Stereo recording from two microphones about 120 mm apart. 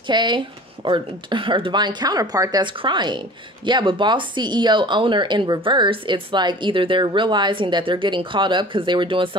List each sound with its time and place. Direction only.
0.0 s speech: 40° right (ahead or behind)
2.6 s speech: 40° right (ahead or behind)